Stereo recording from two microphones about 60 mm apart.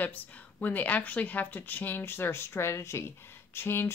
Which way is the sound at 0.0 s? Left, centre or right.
Left.